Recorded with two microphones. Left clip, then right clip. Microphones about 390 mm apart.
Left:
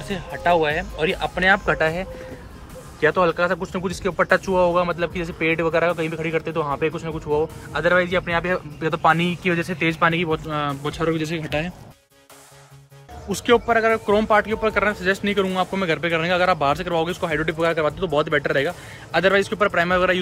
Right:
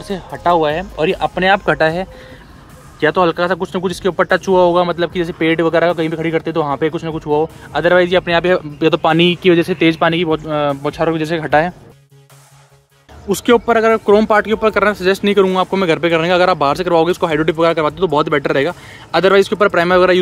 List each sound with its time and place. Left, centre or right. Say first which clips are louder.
0.1 s speech: right 5 dB; centre
13.3 s speech: right 5 dB; centre